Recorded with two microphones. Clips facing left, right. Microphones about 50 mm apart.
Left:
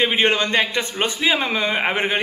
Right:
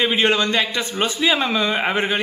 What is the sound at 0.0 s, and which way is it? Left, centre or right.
A man's voice, left.